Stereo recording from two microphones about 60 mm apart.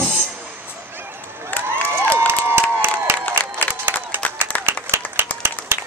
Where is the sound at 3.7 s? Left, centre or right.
Right.